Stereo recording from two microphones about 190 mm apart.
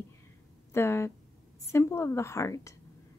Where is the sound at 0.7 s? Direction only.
15° left (ahead or behind).